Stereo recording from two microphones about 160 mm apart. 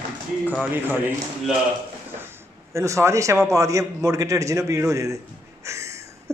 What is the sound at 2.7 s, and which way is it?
A man's voice, 20° right (ahead or behind).